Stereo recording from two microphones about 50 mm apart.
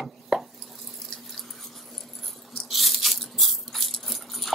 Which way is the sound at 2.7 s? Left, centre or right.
Centre.